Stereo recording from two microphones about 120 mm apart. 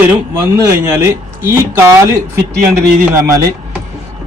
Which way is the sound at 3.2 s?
25° right (ahead or behind).